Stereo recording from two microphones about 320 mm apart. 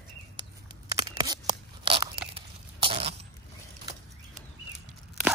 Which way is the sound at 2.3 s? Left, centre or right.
Centre.